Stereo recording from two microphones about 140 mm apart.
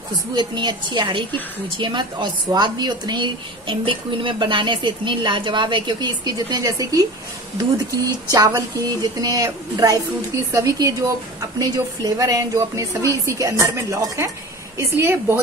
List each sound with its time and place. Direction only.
0.4 s speech: 35° right (ahead or behind); by 15.3 s 15° right (ahead or behind)